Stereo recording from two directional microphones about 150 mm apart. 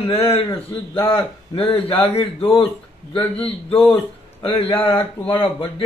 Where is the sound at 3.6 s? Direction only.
10° left (ahead or behind).